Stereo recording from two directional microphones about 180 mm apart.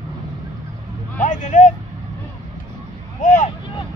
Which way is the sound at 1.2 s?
45° left (ahead or behind).